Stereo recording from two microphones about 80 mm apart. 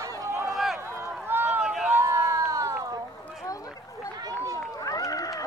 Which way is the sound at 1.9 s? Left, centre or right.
Right.